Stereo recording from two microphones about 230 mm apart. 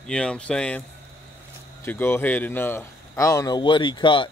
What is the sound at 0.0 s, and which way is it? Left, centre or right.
Speech, centre.